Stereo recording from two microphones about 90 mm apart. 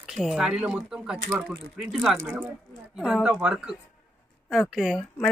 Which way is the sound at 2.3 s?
25° right (ahead or behind).